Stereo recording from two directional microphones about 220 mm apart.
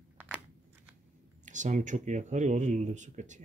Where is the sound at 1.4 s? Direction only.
35° right (ahead or behind).